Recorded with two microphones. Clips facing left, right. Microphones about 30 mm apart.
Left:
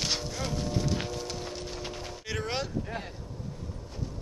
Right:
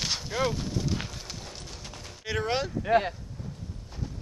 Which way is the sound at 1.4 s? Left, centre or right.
Centre.